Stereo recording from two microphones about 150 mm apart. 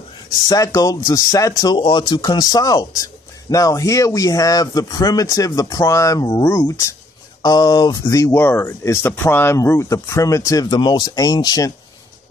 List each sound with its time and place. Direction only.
0.7 s speech: 25° left (ahead or behind)